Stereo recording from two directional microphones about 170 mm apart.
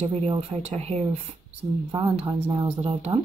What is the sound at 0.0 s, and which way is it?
Speech, 35° right (ahead or behind).